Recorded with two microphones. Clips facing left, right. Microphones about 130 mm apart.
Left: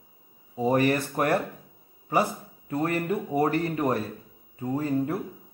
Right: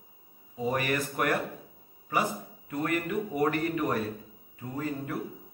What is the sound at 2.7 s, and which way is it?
A man's voice, 35° left (ahead or behind).